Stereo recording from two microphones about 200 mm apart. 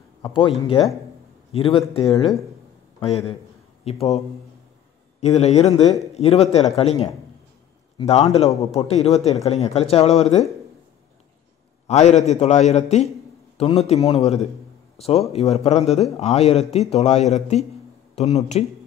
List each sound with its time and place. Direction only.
0.2 s speech: 25° left (ahead or behind)
5.2 s speech: 35° left (ahead or behind)
11.9 s speech: 35° left (ahead or behind)